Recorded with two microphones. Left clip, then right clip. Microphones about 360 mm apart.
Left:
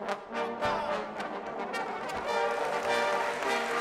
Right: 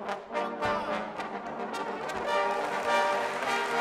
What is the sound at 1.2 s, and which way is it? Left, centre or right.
Brass instrument, right.